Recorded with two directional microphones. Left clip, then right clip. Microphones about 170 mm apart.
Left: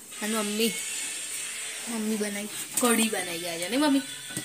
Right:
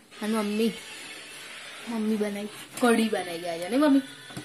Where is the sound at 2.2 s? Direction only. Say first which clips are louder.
Right 1 dB; centre (ahead or behind).